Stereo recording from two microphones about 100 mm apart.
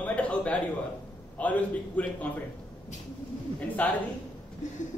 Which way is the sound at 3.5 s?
15° left (ahead or behind).